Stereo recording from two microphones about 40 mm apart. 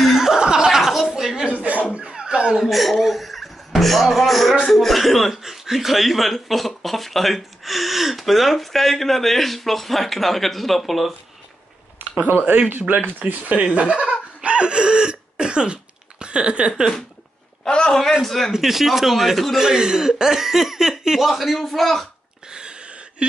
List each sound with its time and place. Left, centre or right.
0.0 s chuckle: centre
0.3 s chuckle: centre
2.0 s a sound: right
2.5 s speech: centre
12.2 s speech: right
13.2 s speech: right
17.6 s a man's voice: left
18.2 s speech: centre
18.5 s speech: centre
19.6 s speech: centre
22.5 s a sound: right